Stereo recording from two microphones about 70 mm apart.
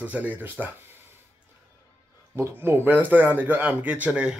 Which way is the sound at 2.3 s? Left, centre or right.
Right.